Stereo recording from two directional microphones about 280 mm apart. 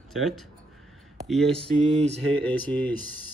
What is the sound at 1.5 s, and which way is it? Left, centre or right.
Speech, right.